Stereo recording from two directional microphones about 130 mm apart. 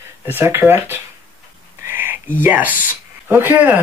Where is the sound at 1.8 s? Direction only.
15° right (ahead or behind).